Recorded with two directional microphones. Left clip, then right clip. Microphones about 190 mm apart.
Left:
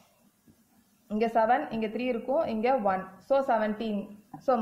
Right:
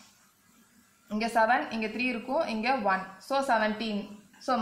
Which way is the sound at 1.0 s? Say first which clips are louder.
Left 1 dB; 50° left (ahead or behind).